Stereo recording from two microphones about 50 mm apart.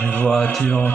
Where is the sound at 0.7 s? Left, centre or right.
Left.